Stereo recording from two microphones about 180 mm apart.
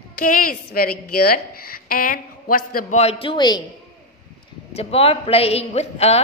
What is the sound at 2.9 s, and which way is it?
Speech, 30° left (ahead or behind).